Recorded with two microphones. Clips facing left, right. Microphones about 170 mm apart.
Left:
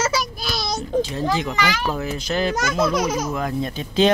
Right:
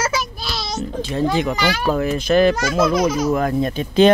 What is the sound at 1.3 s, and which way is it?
Speech, 55° right (ahead or behind).